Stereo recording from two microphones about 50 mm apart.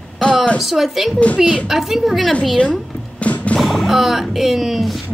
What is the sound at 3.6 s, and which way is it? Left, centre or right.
Speech, centre.